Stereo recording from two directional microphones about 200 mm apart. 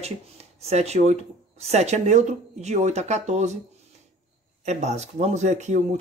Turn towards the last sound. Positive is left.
turn(degrees=-35)  # may be behind; listen again after turning